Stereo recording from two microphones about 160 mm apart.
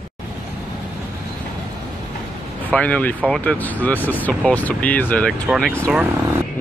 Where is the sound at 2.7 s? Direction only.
10° left (ahead or behind).